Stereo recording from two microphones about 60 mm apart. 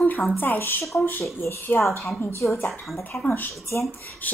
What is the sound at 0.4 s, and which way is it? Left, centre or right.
Speech, left.